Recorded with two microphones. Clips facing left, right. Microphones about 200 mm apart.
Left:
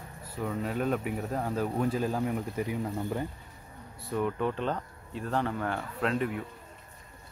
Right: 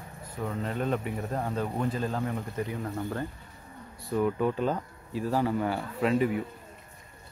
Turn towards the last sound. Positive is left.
turn(degrees=-5)  # may be behind; listen again after turning